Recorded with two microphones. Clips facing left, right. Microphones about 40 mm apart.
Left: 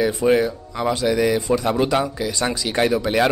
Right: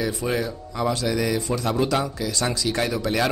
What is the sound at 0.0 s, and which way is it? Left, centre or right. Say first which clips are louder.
Speech: left 7 dB; left.